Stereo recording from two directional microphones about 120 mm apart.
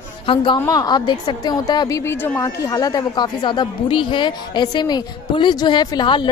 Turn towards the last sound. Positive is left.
turn(degrees=40)  # may be behind; listen again after turning